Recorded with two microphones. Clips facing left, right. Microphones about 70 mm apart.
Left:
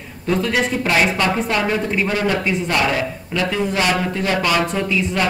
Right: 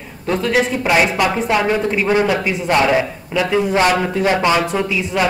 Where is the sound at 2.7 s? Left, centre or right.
Centre.